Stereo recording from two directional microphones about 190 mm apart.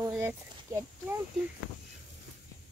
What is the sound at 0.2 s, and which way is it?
Speech, 10° right (ahead or behind).